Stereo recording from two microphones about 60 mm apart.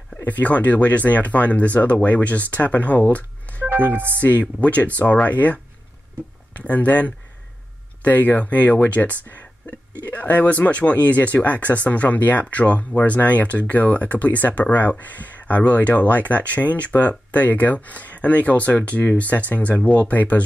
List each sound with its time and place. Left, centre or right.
0.2 s speech: left
3.6 s speech: right
4.2 s speech: left